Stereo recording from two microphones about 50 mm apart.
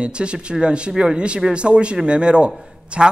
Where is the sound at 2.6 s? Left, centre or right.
Right.